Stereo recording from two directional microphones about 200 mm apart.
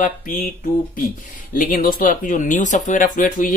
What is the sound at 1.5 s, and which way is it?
Speech, 45° left (ahead or behind).